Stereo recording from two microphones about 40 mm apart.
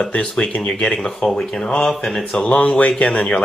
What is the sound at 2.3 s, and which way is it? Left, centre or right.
Speech, left.